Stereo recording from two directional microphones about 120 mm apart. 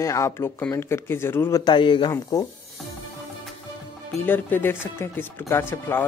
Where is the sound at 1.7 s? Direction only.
40° left (ahead or behind).